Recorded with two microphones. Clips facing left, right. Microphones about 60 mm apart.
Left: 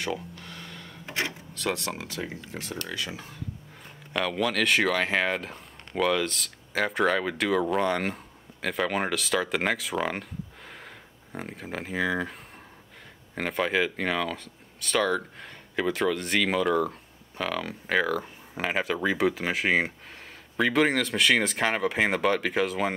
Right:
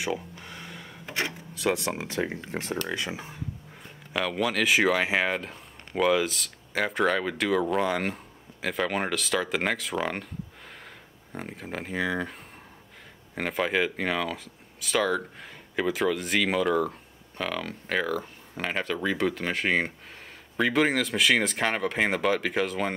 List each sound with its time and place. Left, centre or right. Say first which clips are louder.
0.0 s a sound: right 1 dB; centre
2.0 s speech: right 5 dB; right
4.1 s speech: even; centre
11.3 s speech: even; centre